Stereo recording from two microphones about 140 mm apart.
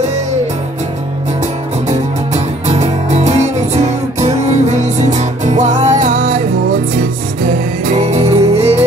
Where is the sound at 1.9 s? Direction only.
50° right (ahead or behind); by 7.6 s 70° right (ahead or behind).